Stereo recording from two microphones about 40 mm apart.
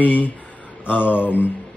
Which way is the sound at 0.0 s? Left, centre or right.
Left.